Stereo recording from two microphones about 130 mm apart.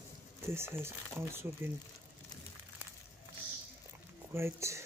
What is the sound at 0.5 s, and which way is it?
Speech, 20° right (ahead or behind).